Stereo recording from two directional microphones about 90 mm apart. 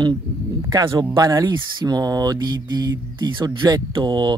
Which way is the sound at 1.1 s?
45° right (ahead or behind).